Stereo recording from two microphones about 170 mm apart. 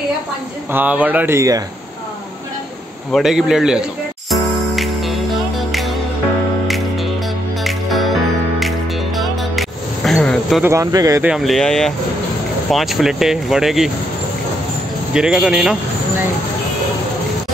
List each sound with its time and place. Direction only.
0.7 s speech: 10° right (ahead or behind)
3.1 s speech: centre (ahead or behind)
4.3 s music: centre (ahead or behind)
7.6 s music: centre (ahead or behind)
10.6 s speech: 15° right (ahead or behind)
11.2 s speech: centre (ahead or behind)
15.1 s speech: 5° right (ahead or behind)